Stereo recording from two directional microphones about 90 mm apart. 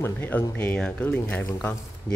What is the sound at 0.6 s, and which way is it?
A man's voice, 15° left (ahead or behind).